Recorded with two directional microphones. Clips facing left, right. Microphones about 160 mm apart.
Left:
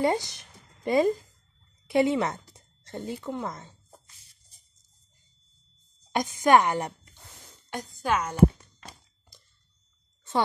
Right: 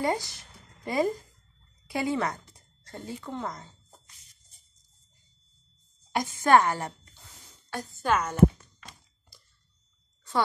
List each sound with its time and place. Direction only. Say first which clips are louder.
0.0 s a sound: left 3 dB; 20° left (ahead or behind)
1.9 s speech: left 5 dB; 25° left (ahead or behind)
6.1 s a woman's voice: left 1 dB; 15° left (ahead or behind)